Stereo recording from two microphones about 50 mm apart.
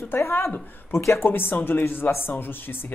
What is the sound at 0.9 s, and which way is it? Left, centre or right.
Speech, left.